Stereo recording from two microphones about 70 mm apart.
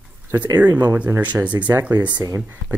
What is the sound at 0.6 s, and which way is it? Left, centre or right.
Speech, right.